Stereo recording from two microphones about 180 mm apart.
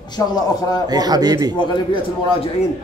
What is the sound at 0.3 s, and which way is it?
Speech, 20° left (ahead or behind).